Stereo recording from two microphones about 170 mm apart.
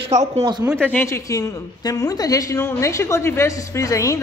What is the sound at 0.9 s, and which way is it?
A woman's voice, 15° left (ahead or behind).